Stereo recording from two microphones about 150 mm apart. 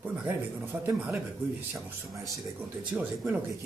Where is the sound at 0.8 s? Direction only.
10° right (ahead or behind).